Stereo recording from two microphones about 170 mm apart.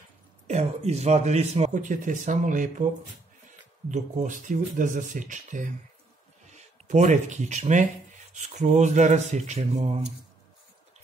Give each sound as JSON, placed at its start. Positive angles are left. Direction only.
{"t": 0.5, "sound": "speech", "side_deg": -40}
{"t": 3.9, "sound": "speech", "side_deg": -45}